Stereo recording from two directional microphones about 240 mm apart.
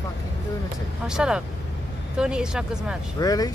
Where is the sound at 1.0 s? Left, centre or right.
Centre.